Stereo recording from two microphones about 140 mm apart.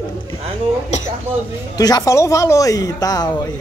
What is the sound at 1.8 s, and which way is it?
A man's voice, 25° left (ahead or behind).